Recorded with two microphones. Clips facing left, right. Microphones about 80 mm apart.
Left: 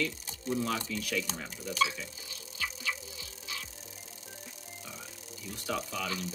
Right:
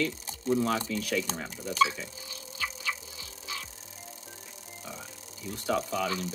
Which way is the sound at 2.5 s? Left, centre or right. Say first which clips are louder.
Right 2 dB; right.